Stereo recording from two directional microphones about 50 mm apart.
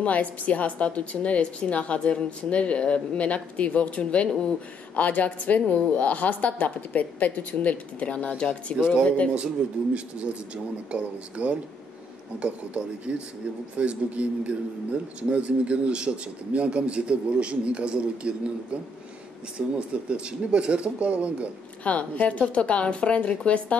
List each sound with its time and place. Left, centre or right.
0.0 s a woman's voice: left
9.6 s speech: right
19.9 s speech: right
21.8 s a woman's voice: left